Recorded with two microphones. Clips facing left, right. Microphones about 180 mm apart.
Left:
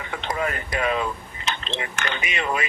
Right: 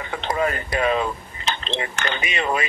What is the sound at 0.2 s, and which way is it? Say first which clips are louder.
Speech: right 4 dB; 30° right (ahead or behind).